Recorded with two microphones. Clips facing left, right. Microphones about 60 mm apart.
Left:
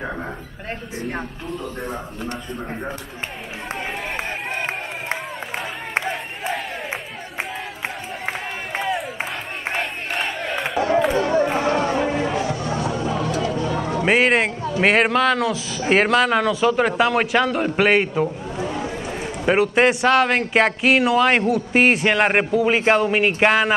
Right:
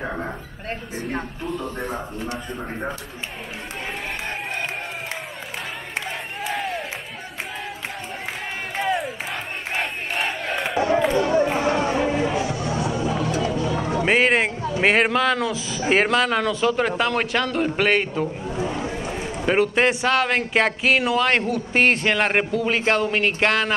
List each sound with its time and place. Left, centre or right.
0.0 s a man's voice: centre
6.5 s crowd: centre
8.8 s crowd: centre
9.8 s battle cry: centre
11.0 s chatter: centre
11.7 s chatter: centre
12.1 s music: centre
12.4 s music: left
12.7 s music: centre
13.7 s a sound: centre
14.0 s a man's voice: centre
18.7 s run: centre
19.1 s a man's voice: centre